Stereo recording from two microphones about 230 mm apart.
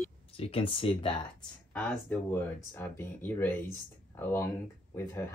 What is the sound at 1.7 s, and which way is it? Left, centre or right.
Speech, centre.